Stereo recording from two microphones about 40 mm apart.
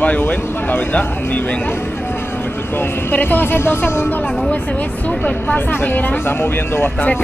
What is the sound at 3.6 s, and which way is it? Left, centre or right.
Speech, left.